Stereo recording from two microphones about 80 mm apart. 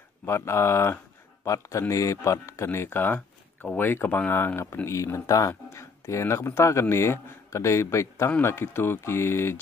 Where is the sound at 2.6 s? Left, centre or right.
Left.